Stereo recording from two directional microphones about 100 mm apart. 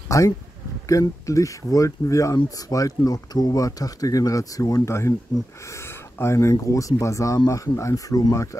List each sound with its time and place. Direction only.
0.1 s speech: 30° left (ahead or behind)